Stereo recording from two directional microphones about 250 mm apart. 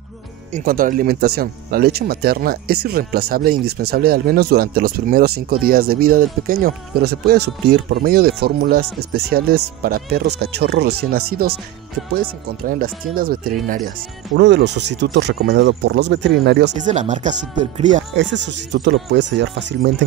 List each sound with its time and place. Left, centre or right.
0.5 s speech: right
12.6 s speech: right
16.7 s speech: right
18.1 s speech: right